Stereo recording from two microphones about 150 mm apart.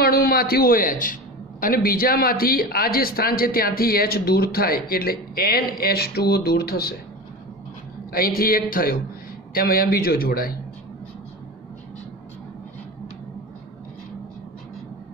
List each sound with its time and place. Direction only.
0.0 s a man's voice: 90° left
8.1 s a man's voice: 75° left (ahead or behind)